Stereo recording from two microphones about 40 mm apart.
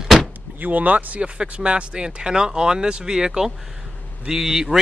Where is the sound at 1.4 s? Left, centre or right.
Right.